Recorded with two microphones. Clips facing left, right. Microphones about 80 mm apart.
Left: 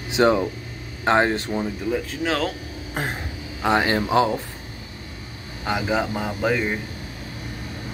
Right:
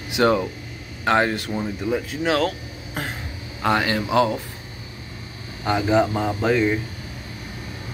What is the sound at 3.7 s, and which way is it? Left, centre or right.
Speech, left.